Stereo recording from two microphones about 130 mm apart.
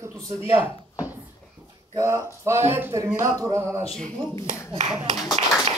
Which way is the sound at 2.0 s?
20° right (ahead or behind).